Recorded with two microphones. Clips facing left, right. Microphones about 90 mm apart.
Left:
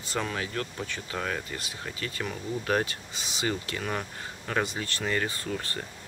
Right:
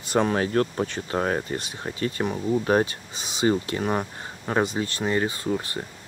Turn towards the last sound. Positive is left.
turn(degrees=-20)  # may be behind; listen again after turning